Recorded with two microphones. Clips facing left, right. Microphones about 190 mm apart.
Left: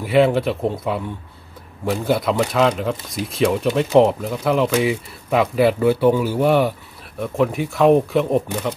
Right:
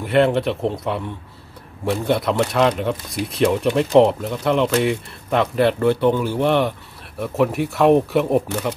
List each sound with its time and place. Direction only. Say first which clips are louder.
0.0 s speech: left 1 dB; centre (ahead or behind)